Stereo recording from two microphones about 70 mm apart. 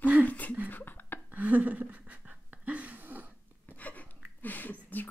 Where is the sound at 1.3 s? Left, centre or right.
Right.